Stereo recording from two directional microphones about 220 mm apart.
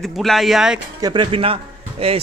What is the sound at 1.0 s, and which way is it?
Speech, 20° right (ahead or behind).